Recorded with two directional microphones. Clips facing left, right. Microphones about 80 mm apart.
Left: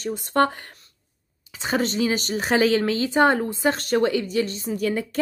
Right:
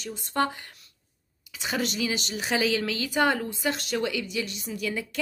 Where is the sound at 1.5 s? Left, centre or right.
Left.